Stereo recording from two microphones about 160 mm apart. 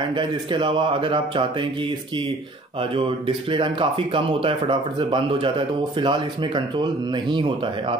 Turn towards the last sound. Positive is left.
turn(degrees=-30)  # may be behind; listen again after turning